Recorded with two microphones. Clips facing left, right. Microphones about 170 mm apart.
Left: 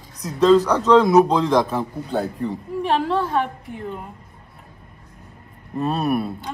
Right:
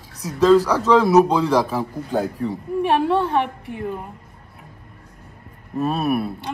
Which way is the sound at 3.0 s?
20° right (ahead or behind).